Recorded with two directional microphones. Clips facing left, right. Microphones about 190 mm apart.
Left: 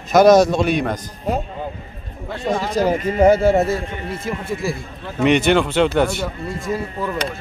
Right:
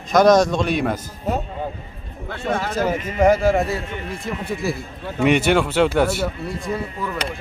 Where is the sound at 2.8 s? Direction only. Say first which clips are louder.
Left 3 dB; 35° left (ahead or behind).